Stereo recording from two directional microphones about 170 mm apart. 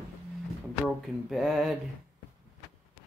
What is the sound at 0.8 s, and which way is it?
Speech, centre (ahead or behind).